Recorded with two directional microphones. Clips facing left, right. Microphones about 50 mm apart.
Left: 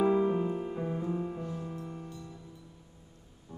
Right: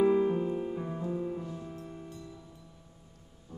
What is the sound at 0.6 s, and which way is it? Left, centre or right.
Music, centre.